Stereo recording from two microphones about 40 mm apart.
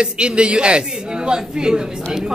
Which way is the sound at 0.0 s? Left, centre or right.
Right.